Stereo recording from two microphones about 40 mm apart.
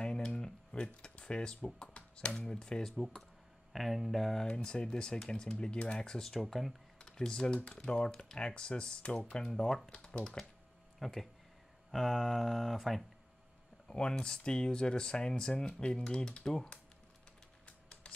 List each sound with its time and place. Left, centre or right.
0.0 s a sound: left
1.8 s music: left
2.4 s speech: left
3.0 s speech: centre
4.6 s speech: left
6.4 s speech: centre
7.0 s speech: centre
9.8 s speech: left
11.0 s speech: centre
13.8 s speech: left